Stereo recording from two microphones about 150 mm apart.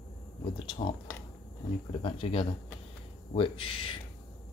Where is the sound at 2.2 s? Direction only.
35° left (ahead or behind).